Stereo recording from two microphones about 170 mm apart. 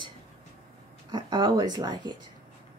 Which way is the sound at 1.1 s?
25° right (ahead or behind).